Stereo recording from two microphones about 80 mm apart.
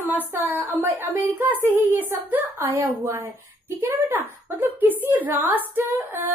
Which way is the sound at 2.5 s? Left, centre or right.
Right.